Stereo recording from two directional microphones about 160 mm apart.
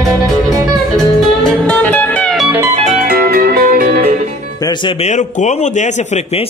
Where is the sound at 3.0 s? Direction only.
70° right (ahead or behind).